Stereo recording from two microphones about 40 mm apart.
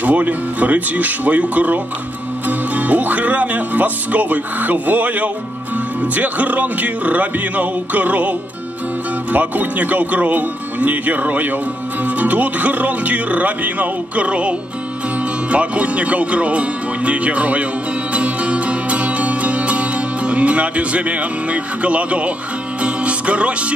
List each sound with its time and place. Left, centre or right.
0.0 s speech: right
2.4 s music: right
6.1 s speech: right
15.5 s speech: right
18.1 s music: right